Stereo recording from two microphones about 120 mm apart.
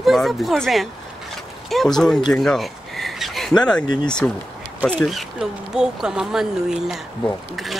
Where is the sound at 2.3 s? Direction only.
Centre (ahead or behind).